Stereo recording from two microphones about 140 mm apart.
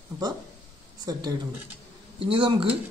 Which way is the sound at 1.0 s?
25° right (ahead or behind).